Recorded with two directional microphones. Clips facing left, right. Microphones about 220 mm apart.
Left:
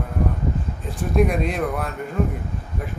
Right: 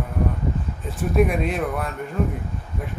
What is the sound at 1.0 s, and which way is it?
Speech, 5° right (ahead or behind).